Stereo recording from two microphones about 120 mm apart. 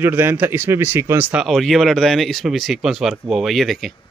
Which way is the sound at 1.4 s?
Centre (ahead or behind).